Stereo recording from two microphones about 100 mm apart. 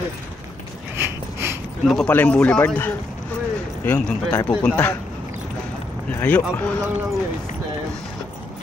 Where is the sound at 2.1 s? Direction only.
15° left (ahead or behind).